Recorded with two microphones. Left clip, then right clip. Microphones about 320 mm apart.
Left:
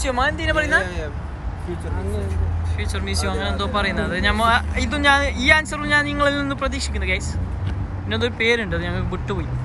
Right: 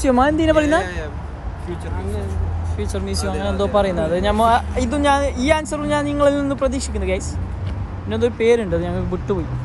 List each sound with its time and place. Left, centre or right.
0.0 s speech: right
2.8 s speech: centre